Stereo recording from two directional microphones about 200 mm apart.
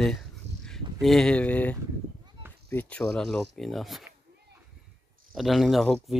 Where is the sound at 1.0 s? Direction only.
5° left (ahead or behind).